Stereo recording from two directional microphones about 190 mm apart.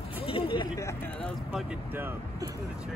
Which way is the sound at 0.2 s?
30° left (ahead or behind).